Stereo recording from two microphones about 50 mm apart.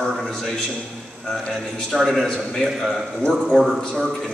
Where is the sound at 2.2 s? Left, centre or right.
Centre.